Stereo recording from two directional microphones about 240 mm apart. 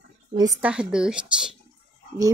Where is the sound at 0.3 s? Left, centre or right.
Centre.